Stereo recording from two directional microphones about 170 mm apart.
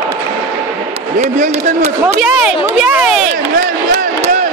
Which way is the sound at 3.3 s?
60° right (ahead or behind).